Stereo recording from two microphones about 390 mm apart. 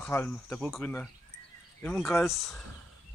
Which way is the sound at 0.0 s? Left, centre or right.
Centre.